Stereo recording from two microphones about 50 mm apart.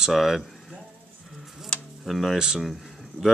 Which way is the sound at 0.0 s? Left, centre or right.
Centre.